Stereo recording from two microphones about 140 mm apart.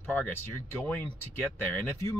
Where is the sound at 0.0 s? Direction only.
15° left (ahead or behind).